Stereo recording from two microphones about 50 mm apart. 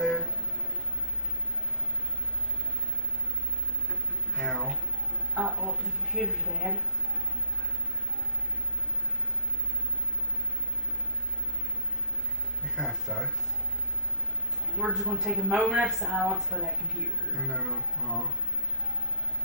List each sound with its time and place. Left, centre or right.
0.0 s music: centre
4.4 s music: centre
5.3 s music: centre
12.7 s music: centre
14.8 s a man's voice: centre
17.6 s music: centre